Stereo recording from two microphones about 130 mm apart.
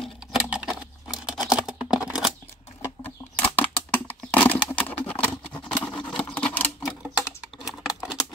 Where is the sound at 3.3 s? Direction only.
10° left (ahead or behind).